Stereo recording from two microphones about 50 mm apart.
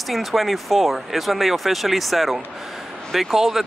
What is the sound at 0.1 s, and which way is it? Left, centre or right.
Speech, centre.